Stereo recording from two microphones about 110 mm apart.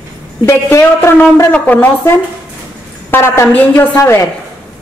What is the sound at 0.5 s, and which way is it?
A woman's voice, 25° left (ahead or behind).